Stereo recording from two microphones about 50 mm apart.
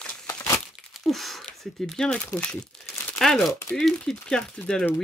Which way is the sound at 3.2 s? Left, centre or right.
Centre.